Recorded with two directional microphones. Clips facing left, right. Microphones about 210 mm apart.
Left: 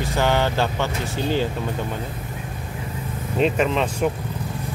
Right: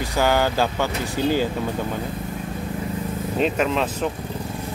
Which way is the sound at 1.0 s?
15° right (ahead or behind).